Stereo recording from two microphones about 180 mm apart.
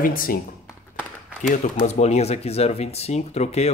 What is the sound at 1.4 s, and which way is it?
Speech, 45° left (ahead or behind).